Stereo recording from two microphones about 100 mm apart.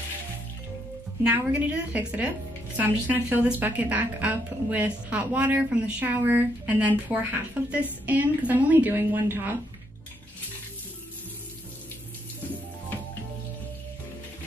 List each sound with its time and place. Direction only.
1.2 s a woman's voice: 15° right (ahead or behind)